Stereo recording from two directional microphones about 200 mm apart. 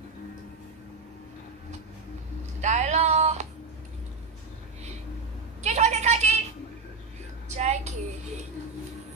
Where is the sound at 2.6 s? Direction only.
35° right (ahead or behind).